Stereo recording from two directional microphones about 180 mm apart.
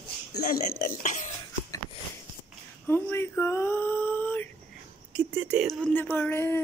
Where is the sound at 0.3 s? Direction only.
55° left (ahead or behind).